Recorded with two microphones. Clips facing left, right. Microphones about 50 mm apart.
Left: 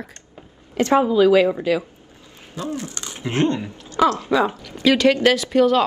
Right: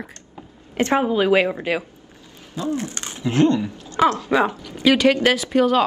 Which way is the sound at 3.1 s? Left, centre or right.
Left.